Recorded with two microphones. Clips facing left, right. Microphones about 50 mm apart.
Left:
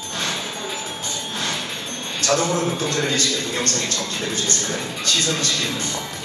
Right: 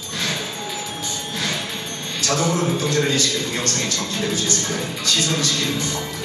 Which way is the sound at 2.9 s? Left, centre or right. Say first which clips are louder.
Right 2 dB; left.